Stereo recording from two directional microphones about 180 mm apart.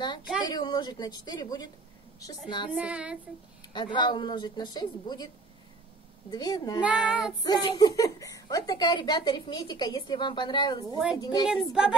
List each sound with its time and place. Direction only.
0.5 s speech: 25° left (ahead or behind)
2.7 s child singing: 5° right (ahead or behind)
3.6 s speech: 25° left (ahead or behind)
6.3 s speech: 20° left (ahead or behind)
6.8 s a woman's voice: 5° right (ahead or behind)
7.4 s speech: 25° left (ahead or behind)
11.4 s a woman's voice: 5° right (ahead or behind)